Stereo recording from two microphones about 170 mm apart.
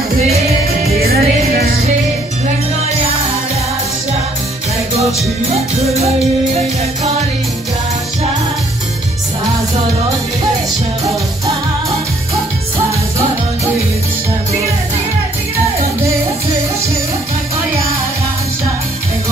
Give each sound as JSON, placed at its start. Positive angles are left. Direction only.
{"t": 0.9, "sound": "music", "side_deg": -65}
{"t": 5.5, "sound": "music", "side_deg": -40}